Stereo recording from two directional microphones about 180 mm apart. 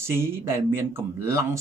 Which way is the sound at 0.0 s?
15° right (ahead or behind).